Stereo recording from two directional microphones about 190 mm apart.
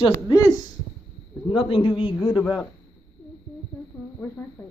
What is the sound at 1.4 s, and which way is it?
Speech, 30° left (ahead or behind).